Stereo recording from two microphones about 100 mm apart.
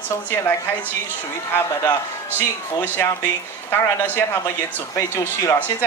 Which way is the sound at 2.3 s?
20° left (ahead or behind).